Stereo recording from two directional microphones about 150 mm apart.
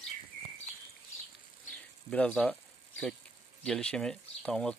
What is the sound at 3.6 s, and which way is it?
Speech, 5° left (ahead or behind).